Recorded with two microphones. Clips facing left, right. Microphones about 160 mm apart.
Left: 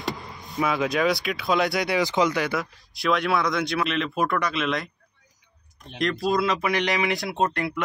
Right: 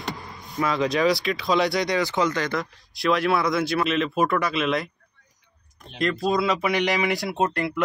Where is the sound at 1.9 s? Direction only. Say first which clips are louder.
Left 1 dB; 15° left (ahead or behind); by 4.8 s 5° right (ahead or behind).